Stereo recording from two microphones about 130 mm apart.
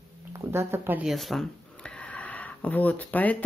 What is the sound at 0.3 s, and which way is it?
Speech, 20° right (ahead or behind).